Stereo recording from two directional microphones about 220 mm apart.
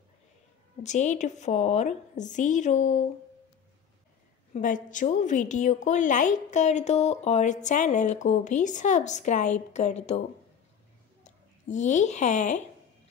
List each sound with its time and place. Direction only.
0.8 s a woman's voice: 35° left (ahead or behind)
4.6 s a woman's voice: 35° left (ahead or behind)
11.2 s speech: 35° left (ahead or behind)